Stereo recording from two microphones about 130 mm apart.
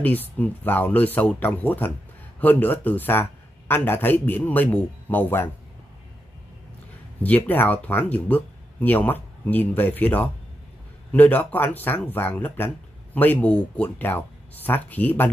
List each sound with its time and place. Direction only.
0.0 s speech: 15° left (ahead or behind)
7.2 s speech: 15° left (ahead or behind)